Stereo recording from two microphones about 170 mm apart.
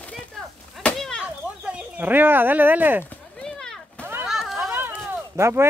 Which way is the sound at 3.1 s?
5° left (ahead or behind).